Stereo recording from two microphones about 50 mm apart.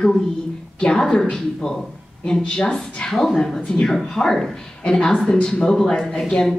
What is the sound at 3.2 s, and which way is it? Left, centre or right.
A woman's voice, centre.